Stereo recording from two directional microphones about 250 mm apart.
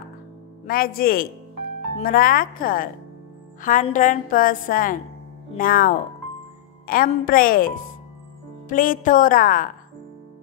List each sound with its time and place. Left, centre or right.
0.7 s a woman's voice: left